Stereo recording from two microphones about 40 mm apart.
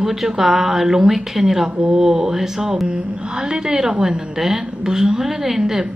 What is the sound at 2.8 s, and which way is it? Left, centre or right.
A woman's voice, right.